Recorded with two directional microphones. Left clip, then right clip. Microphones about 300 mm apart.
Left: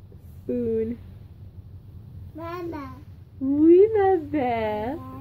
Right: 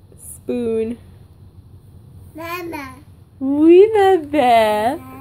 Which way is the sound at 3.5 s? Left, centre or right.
Centre.